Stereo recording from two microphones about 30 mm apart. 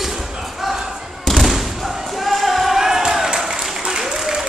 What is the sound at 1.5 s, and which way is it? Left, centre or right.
Slam, centre.